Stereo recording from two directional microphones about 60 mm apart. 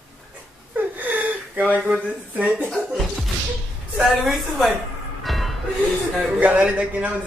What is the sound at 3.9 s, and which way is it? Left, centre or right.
Speech, centre.